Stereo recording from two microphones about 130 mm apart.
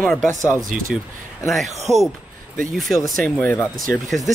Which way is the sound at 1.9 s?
5° left (ahead or behind).